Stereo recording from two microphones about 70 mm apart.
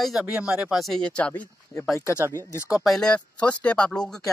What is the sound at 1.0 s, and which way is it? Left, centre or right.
Speech, centre.